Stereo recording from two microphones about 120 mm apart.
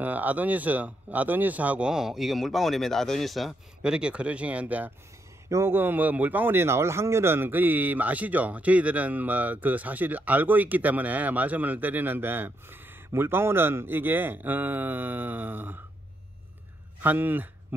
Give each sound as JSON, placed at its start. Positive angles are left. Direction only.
{"t": 0.0, "sound": "a man's voice", "side_deg": -15}
{"t": 17.0, "sound": "a man's voice", "side_deg": -15}